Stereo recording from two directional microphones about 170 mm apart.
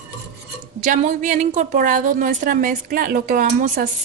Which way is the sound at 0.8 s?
45° right (ahead or behind).